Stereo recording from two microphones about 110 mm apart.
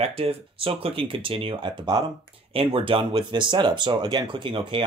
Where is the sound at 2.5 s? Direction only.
55° right (ahead or behind).